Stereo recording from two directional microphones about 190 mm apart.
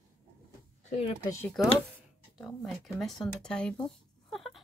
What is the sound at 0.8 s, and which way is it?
Speech, 35° left (ahead or behind).